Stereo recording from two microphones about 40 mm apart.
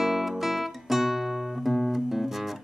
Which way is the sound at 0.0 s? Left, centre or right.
Centre.